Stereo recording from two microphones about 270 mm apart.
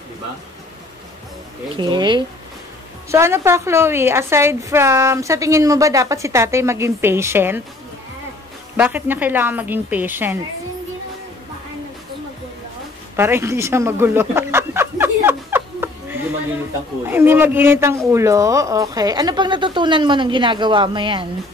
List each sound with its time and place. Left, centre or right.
1.8 s a woman's voice: centre
8.7 s a woman's voice: centre
13.1 s a sound: centre
17.1 s a woman's voice: centre